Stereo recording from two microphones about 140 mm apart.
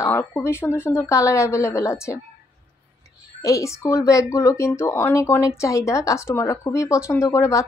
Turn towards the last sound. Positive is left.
turn(degrees=20)  # may be behind; listen again after turning